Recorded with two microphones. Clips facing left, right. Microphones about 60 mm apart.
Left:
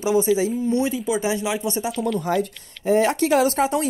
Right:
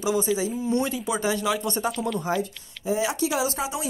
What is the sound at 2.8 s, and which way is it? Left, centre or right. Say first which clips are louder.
Speech: left 6 dB; left.